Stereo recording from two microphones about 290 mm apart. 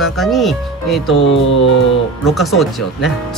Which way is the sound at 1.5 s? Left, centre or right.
Left.